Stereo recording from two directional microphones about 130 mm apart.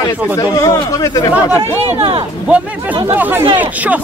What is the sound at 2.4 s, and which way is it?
Speech, 10° right (ahead or behind).